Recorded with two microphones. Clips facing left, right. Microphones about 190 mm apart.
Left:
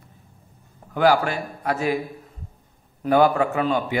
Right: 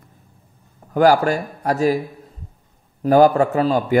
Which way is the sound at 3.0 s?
40° right (ahead or behind).